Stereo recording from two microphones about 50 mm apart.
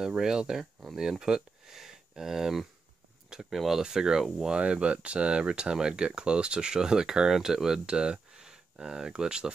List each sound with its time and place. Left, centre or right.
0.2 s speech: centre
4.5 s speech: right